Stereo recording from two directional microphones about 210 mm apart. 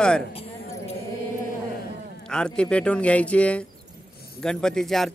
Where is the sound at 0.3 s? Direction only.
25° left (ahead or behind).